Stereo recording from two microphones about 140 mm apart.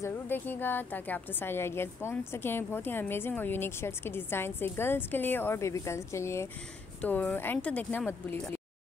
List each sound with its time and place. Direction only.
0.0 s a woman's voice: 15° left (ahead or behind)